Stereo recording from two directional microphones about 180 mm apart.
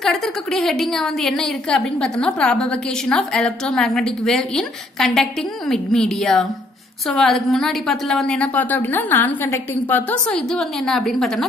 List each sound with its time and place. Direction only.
0.0 s a woman's voice: centre (ahead or behind)